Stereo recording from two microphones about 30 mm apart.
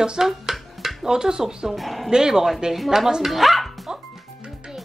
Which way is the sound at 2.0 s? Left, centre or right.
Right.